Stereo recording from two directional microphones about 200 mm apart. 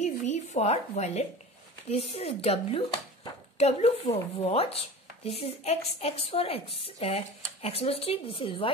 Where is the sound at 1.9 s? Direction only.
30° left (ahead or behind).